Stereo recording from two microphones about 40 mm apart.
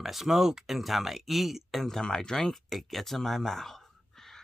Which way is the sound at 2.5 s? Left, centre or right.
Centre.